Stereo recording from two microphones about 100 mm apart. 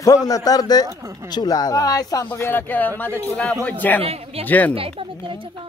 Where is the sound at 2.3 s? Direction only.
20° left (ahead or behind).